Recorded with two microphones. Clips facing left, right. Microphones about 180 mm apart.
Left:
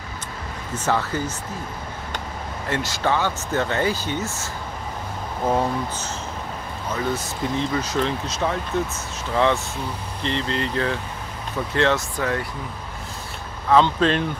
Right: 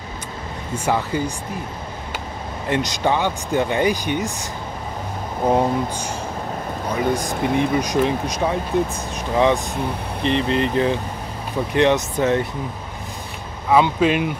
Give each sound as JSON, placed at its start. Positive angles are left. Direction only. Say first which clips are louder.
{"t": 0.7, "sound": "speech", "louder": "right 2 dB", "side_deg": -10}
{"t": 2.7, "sound": "speech", "louder": "right 3 dB", "side_deg": -15}
{"t": 5.5, "sound": "speech", "louder": "right 4 dB", "side_deg": -15}
{"t": 13.7, "sound": "speech", "louder": "right 1 dB", "side_deg": -10}